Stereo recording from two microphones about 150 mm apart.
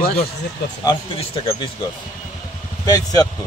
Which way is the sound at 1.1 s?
40° left (ahead or behind).